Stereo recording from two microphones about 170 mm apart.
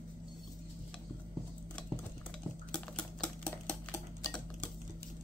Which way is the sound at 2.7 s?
5° left (ahead or behind).